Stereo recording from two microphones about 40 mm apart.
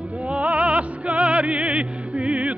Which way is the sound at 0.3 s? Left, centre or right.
Right.